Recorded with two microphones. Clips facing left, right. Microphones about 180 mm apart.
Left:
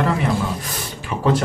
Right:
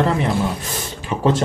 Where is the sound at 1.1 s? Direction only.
25° right (ahead or behind).